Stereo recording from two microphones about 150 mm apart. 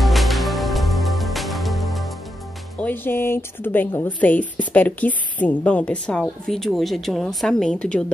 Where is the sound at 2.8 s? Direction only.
15° left (ahead or behind).